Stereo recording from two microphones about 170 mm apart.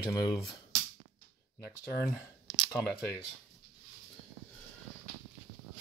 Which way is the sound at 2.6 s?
5° left (ahead or behind).